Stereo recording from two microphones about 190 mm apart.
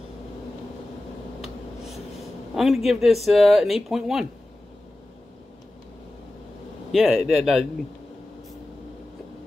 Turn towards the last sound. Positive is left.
turn(degrees=0)  # may be behind; listen again after turning